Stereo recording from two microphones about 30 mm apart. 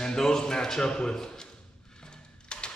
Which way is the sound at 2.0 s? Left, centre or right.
Left.